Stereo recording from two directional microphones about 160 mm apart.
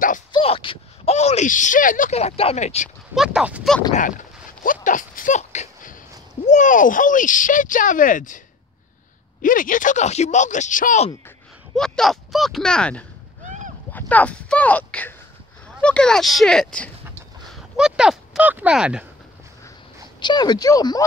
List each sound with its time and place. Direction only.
0.3 s speech: 35° left (ahead or behind); by 2.1 s 55° left (ahead or behind)
2.1 s speech: 40° left (ahead or behind)
3.2 s speech: 5° right (ahead or behind)
3.9 s speech: 55° left (ahead or behind)
9.4 s speech: 55° left (ahead or behind)
11.7 s speech: 5° left (ahead or behind)
20.2 s speech: 25° left (ahead or behind)